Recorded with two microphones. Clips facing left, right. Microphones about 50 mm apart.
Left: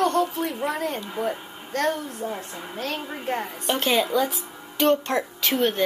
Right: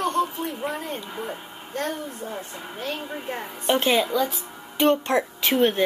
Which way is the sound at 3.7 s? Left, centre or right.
Centre.